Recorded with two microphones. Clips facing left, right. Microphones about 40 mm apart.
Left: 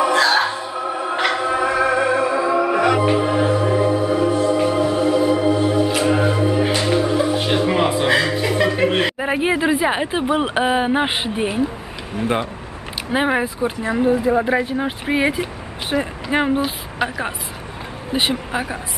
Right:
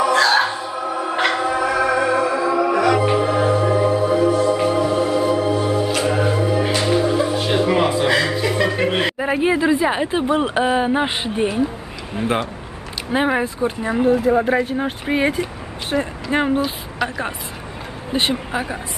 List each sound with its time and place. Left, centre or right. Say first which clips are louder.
0.0 s music: even; centre
0.8 s music: even; centre
1.1 s music: right 1 dB; centre
1.4 s music: even; centre
4.2 s music: right 1 dB; centre
9.8 s speech: even; centre
13.1 s speech: even; centre
18.1 s speech: even; centre